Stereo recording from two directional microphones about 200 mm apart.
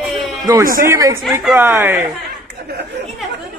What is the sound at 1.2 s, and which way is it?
Speech, 5° right (ahead or behind).